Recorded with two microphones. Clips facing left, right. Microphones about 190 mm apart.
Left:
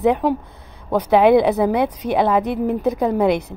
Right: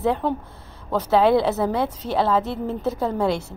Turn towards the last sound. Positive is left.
turn(degrees=15)  # may be behind; listen again after turning